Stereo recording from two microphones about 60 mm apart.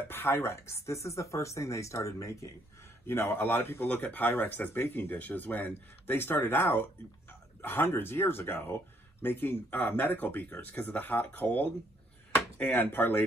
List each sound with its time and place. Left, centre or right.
0.1 s speech: left
3.1 s speech: left